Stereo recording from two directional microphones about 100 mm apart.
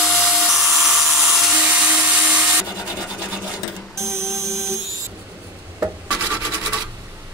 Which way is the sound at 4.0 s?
30° right (ahead or behind).